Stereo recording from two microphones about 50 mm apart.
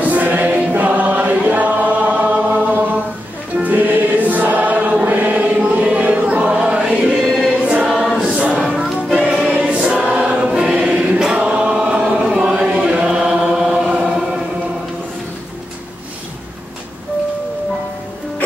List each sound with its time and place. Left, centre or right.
0.0 s choir: right
3.5 s music: right
5.0 s choir: right; by 8.2 s centre
8.3 s a sound: centre
8.6 s music: centre
9.1 s music: centre
9.5 s choir: centre
11.3 s chant: right